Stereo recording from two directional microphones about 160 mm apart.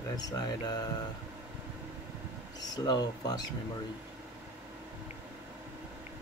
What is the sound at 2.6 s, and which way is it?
Speech, 25° left (ahead or behind).